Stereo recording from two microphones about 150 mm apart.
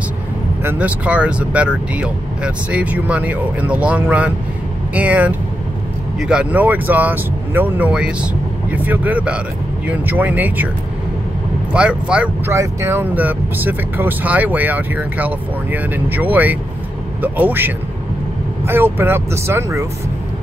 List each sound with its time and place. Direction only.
0.7 s speech: 10° right (ahead or behind)
11.7 s speech: 5° right (ahead or behind)